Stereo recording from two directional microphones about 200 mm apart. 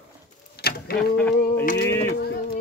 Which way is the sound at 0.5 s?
50° left (ahead or behind).